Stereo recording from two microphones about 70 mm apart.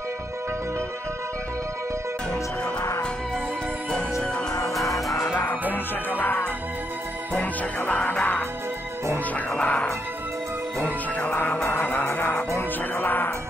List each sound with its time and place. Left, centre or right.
4.2 s music: centre
9.5 s music: centre
11.1 s music: left